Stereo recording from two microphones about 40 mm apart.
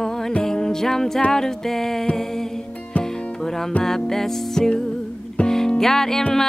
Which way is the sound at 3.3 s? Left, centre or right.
Centre.